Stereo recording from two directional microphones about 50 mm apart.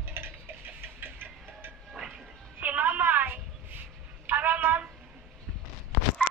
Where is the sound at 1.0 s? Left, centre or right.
Right.